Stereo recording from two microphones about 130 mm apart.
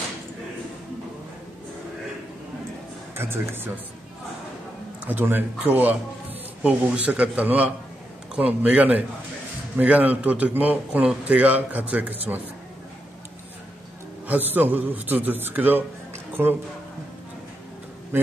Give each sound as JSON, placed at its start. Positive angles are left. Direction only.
{"t": 3.2, "sound": "a man's voice", "side_deg": -15}
{"t": 5.0, "sound": "a man's voice", "side_deg": -15}
{"t": 14.2, "sound": "a man's voice", "side_deg": -15}